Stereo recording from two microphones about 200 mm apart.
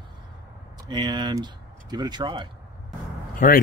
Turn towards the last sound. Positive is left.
turn(degrees=40)  # may be behind; listen again after turning